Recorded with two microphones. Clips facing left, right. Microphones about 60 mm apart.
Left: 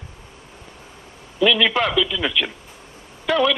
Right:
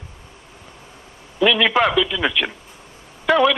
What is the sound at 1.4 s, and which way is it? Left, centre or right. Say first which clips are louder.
A man's voice: right 2 dB; centre.